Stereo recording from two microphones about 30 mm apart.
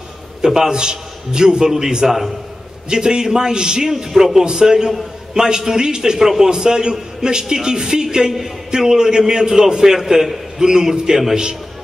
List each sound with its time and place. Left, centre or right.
0.6 s a man's voice: right
6.1 s a man's voice: centre
6.4 s a man's voice: right